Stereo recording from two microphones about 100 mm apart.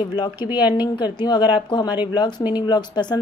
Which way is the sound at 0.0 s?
50° left (ahead or behind).